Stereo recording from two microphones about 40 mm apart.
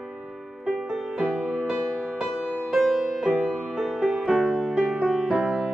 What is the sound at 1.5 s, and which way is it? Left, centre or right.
Music, right.